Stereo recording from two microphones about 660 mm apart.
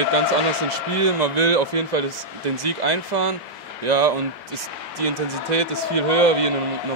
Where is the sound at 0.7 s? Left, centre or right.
Right.